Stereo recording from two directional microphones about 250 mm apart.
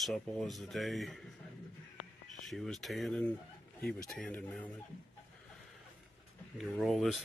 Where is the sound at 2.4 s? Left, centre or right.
Centre.